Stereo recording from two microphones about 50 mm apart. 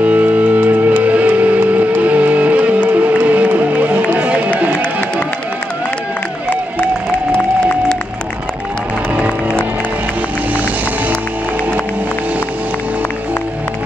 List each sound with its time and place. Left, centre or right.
0.0 s music: right
7.3 s music: centre
9.1 s music: right